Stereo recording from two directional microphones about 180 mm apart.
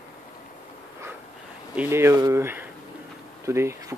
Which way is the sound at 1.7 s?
10° right (ahead or behind).